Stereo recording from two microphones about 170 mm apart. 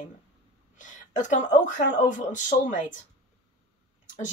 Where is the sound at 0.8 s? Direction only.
45° left (ahead or behind).